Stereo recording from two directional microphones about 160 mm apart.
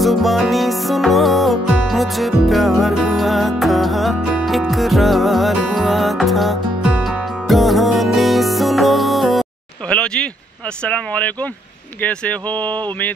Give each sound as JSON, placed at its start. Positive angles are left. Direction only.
{"t": 0.0, "sound": "music", "side_deg": 0}
{"t": 12.0, "sound": "speech", "side_deg": 10}